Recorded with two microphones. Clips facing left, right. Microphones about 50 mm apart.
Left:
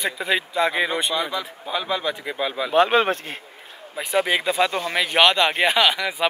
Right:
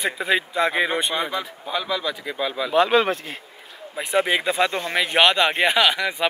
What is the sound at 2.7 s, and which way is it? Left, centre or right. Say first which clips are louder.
Speech: left 1 dB; left.